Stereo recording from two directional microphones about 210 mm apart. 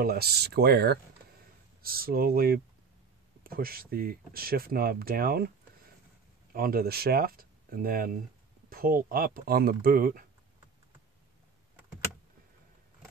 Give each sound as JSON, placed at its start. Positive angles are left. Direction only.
{"t": 0.0, "sound": "speech", "side_deg": -45}
{"t": 6.5, "sound": "speech", "side_deg": -45}